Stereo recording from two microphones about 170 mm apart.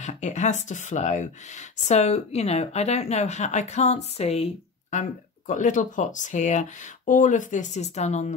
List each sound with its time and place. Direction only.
0.0 s speech: 45° left (ahead or behind)